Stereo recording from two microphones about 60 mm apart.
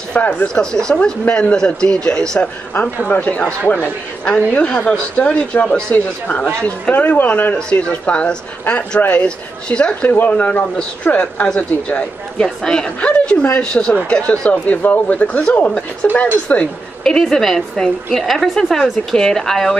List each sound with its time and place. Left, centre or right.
0.1 s speech: left
0.6 s a woman's voice: centre
3.2 s speech: left
4.3 s speech: centre
7.5 s speech: centre
10.0 s a woman's voice: left; by 12.9 s centre
13.0 s a woman's voice: centre
17.0 s a woman's voice: centre